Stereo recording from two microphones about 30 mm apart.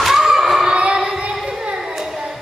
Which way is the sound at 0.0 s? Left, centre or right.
Centre.